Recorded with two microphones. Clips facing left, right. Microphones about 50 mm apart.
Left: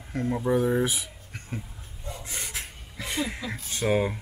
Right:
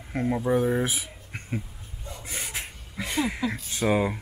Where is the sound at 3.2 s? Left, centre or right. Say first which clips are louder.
Right 5 dB; centre.